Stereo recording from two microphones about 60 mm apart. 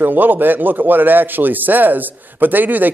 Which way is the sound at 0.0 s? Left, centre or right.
Right.